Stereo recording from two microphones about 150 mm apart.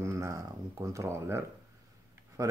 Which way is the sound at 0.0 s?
20° right (ahead or behind).